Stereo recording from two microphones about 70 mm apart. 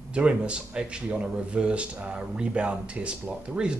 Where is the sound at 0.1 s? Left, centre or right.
Centre.